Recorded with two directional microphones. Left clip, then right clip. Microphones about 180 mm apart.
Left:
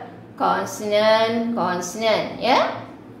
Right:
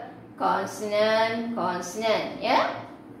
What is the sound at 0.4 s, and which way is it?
Speech, 55° left (ahead or behind).